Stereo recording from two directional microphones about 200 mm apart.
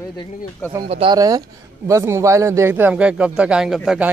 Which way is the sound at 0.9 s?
25° right (ahead or behind).